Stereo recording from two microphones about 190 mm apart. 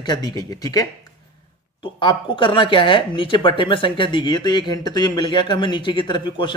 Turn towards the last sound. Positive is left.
turn(degrees=25)  # may be behind; listen again after turning